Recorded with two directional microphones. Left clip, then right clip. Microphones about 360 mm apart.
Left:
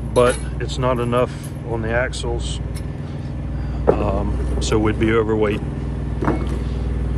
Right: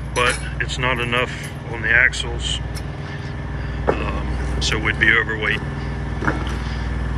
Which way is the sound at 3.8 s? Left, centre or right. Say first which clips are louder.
Left 4 dB; centre.